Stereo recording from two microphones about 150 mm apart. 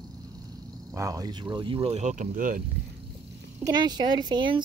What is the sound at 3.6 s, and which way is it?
A child's voice, 30° right (ahead or behind).